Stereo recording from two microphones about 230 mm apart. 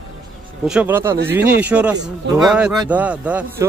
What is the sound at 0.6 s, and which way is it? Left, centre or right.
A man's voice, centre.